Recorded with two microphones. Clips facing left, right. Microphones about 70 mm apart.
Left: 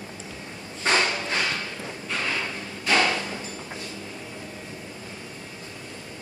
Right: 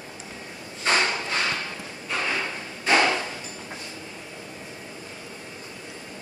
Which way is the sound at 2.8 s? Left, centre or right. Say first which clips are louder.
Right 2 dB; right.